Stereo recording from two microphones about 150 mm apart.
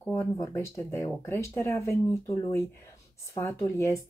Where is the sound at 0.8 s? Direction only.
15° left (ahead or behind).